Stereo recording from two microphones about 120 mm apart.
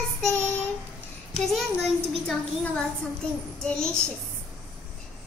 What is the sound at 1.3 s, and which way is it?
Speech, centre (ahead or behind).